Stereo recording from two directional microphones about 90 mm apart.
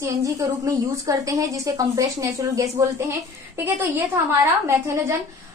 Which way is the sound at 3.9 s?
30° right (ahead or behind).